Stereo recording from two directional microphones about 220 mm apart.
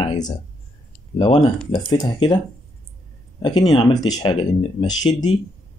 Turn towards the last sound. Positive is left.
turn(degrees=20)  # may be behind; listen again after turning